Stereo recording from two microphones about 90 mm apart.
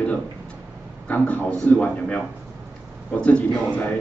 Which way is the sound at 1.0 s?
15° left (ahead or behind).